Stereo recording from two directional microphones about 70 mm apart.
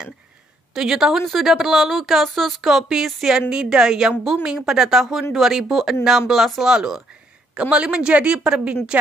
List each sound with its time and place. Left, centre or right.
0.7 s speech: centre